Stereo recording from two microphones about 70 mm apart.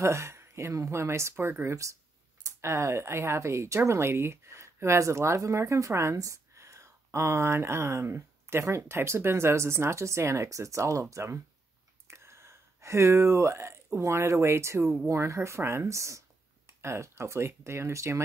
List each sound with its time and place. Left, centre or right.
0.0 s speech: right